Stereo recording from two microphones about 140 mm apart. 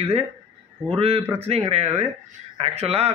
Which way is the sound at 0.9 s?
45° right (ahead or behind).